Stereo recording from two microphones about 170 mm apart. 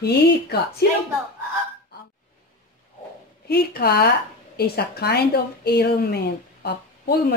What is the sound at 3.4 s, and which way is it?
Speech, 65° left (ahead or behind).